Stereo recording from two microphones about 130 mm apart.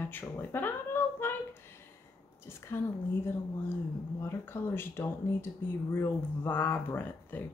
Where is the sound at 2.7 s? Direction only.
20° left (ahead or behind).